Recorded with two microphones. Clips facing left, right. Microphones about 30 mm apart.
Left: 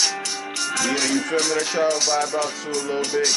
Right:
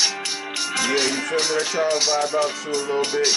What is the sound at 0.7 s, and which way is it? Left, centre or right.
Speech, right.